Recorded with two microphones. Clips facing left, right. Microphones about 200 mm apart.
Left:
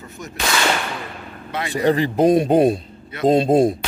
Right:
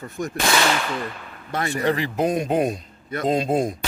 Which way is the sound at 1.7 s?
30° left (ahead or behind).